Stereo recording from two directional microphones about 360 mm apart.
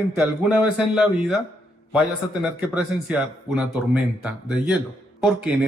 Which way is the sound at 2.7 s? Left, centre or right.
Centre.